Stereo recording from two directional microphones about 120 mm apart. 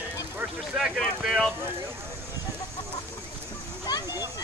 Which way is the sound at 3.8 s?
35° left (ahead or behind).